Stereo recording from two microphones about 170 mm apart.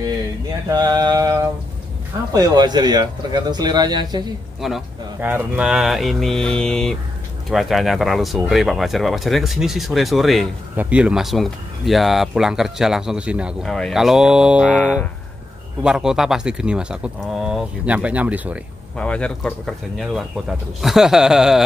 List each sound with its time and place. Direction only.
0.7 s mantra: 25° right (ahead or behind)
2.3 s speech: 20° right (ahead or behind)
4.6 s speech: centre (ahead or behind)
18.9 s speech: 5° left (ahead or behind)